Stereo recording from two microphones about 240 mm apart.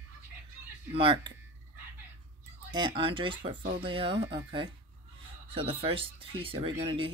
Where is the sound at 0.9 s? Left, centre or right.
Right.